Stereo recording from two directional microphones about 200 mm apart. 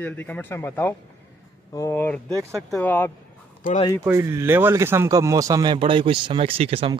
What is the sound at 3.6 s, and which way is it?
Speech, 25° left (ahead or behind).